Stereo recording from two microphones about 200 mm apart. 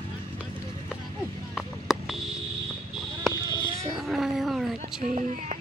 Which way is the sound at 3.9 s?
Centre (ahead or behind).